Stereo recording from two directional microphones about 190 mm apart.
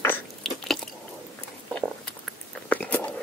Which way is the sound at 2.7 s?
10° left (ahead or behind).